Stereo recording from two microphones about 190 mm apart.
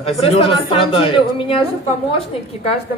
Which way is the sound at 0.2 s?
30° left (ahead or behind).